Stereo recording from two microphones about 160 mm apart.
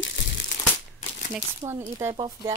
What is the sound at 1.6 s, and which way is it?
Speech, 15° right (ahead or behind).